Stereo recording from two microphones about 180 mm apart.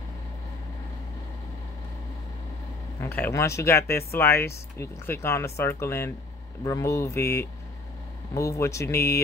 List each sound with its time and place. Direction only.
3.0 s speech: 10° left (ahead or behind)